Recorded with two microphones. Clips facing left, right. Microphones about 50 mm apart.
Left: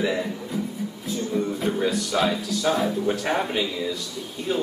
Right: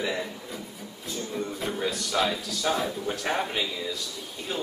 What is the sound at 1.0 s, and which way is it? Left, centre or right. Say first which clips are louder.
A man's voice: left 6 dB; centre.